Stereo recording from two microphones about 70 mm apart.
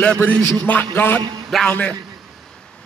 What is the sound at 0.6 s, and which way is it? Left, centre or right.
Speech, left.